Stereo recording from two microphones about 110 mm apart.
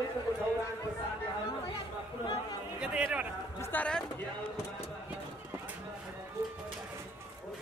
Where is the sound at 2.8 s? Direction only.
10° right (ahead or behind).